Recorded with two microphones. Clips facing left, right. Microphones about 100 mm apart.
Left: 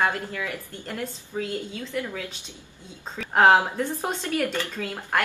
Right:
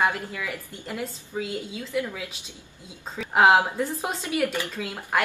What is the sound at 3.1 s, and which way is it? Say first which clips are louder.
Speech: even; 5° right (ahead or behind).